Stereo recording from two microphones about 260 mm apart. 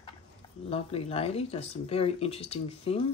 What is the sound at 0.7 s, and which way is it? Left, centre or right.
Speech, left.